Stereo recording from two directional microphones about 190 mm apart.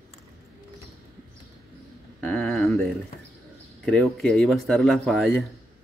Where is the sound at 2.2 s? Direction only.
5° left (ahead or behind).